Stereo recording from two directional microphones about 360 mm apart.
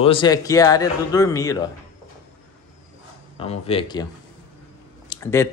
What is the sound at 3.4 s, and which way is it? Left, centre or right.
Speech, centre.